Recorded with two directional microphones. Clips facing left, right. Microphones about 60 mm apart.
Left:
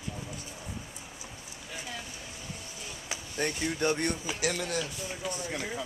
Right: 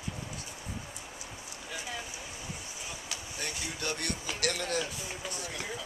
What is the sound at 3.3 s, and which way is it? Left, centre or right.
Speech, left.